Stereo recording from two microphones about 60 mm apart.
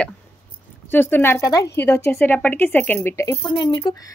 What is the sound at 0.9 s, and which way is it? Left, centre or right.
Speech, left.